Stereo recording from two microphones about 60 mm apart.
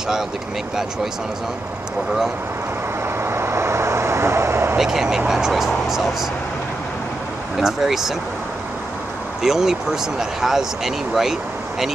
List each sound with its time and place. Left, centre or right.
3.2 s vehicle: right
4.7 s speech: centre
7.5 s speech: centre
9.4 s speech: centre